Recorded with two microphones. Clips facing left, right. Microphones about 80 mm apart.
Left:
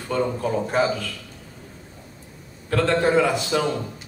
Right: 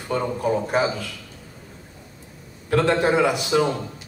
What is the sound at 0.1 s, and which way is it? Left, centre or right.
Speech, centre.